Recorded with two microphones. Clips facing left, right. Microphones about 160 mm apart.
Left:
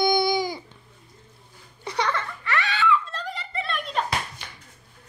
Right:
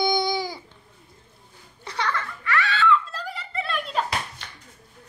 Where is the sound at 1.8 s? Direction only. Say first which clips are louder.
Left 2 dB; 15° left (ahead or behind).